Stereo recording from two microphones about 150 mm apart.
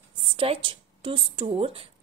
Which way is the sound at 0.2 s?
40° right (ahead or behind).